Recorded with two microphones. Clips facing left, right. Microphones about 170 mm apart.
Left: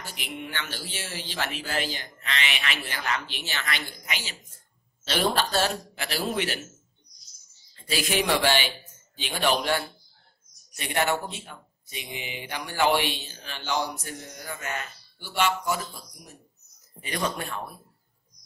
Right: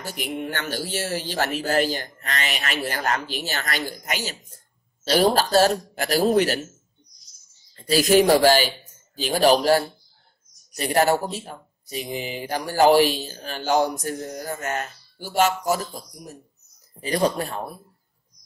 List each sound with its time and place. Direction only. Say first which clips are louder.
0.0 s speech: right 8 dB; 45° right (ahead or behind)
7.7 s speech: right 10 dB; 40° right (ahead or behind)